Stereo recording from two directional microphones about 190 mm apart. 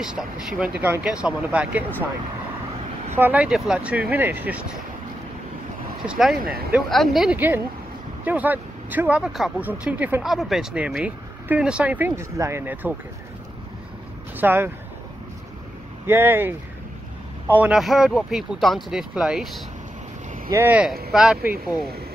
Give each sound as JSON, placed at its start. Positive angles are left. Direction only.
{"t": 0.0, "sound": "speech", "side_deg": -5}
{"t": 3.2, "sound": "speech", "side_deg": -10}
{"t": 6.0, "sound": "speech", "side_deg": 0}
{"t": 6.4, "sound": "speech", "side_deg": -55}
{"t": 6.7, "sound": "speech", "side_deg": 0}
{"t": 14.3, "sound": "speech", "side_deg": -10}
{"t": 16.1, "sound": "speech", "side_deg": -10}
{"t": 17.6, "sound": "speech", "side_deg": -5}